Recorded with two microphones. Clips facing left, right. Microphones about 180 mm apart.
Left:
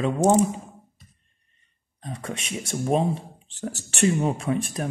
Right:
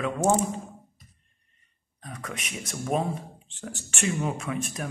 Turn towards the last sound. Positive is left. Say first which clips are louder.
# left 5 dB
turn(degrees=30)  # may be behind; listen again after turning